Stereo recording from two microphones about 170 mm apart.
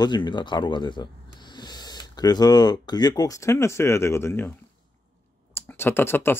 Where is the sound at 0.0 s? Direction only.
25° left (ahead or behind).